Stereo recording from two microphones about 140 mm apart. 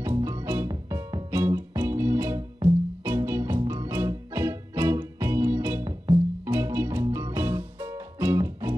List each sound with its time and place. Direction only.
0.0 s music: 20° right (ahead or behind)